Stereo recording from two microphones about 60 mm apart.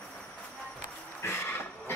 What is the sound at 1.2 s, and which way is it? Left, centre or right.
Train, left.